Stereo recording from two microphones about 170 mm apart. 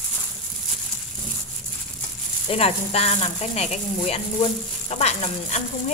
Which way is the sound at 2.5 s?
35° left (ahead or behind).